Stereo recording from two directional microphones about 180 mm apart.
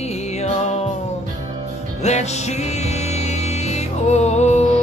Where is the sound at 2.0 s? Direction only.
40° left (ahead or behind).